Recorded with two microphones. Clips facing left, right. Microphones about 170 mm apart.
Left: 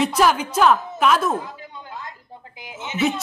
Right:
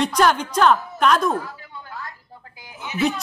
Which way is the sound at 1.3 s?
20° left (ahead or behind).